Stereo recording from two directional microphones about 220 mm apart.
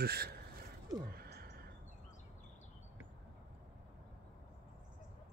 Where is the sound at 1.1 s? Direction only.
45° right (ahead or behind).